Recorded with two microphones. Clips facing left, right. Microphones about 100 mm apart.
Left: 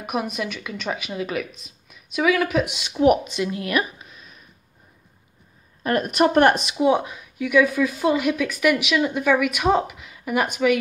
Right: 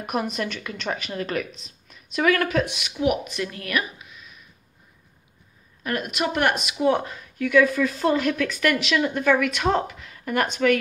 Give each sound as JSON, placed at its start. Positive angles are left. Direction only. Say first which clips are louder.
{"t": 0.0, "sound": "speech", "louder": "even", "side_deg": 5}
{"t": 2.7, "sound": "speech", "louder": "left 6 dB", "side_deg": 30}
{"t": 3.3, "sound": "a woman's voice", "louder": "left 4 dB", "side_deg": 20}
{"t": 5.9, "sound": "speech", "louder": "left 7 dB", "side_deg": 35}
{"t": 6.8, "sound": "speech", "louder": "even", "side_deg": 10}